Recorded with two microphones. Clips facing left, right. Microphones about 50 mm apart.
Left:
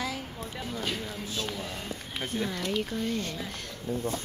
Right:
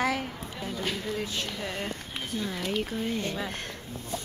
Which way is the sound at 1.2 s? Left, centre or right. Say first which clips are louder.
Right 2 dB; right.